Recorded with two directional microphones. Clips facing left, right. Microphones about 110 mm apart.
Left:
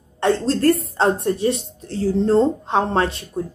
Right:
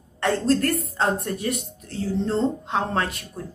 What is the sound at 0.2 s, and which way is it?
Speech, 25° left (ahead or behind).